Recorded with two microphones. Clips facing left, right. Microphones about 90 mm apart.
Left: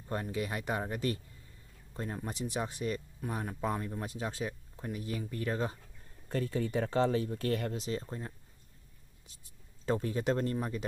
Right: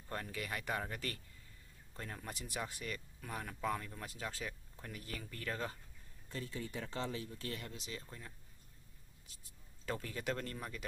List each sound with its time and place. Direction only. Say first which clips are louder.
0.1 s speech: left 7 dB; 20° left (ahead or behind)
6.2 s speech: left 11 dB; 60° left (ahead or behind)
7.7 s speech: left 12 dB; 40° left (ahead or behind)
9.8 s speech: left 9 dB; 25° left (ahead or behind)